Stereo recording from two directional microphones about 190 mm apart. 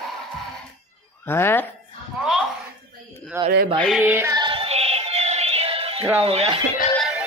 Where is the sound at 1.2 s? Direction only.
10° left (ahead or behind).